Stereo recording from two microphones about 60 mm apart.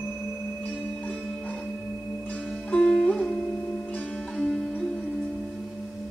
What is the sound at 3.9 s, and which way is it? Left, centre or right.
Music, left.